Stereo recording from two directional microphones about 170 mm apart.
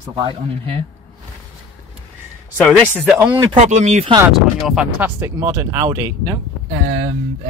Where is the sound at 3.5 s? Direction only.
45° right (ahead or behind).